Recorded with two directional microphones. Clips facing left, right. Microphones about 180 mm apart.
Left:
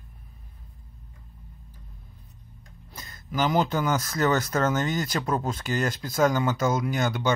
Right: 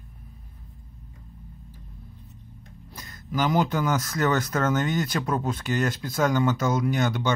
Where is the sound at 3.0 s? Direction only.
20° left (ahead or behind).